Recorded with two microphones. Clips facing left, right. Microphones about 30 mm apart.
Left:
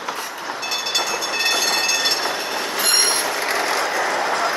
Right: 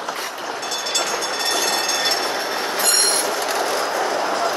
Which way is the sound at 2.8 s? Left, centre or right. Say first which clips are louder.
Left 1 dB; left.